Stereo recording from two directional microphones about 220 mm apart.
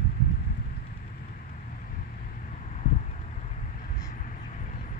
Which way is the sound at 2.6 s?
35° left (ahead or behind).